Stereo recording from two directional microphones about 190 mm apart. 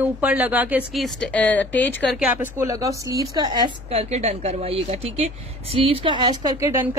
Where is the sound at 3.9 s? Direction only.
35° right (ahead or behind).